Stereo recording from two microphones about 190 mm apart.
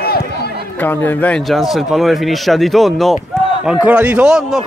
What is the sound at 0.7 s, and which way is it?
Speech, 10° left (ahead or behind).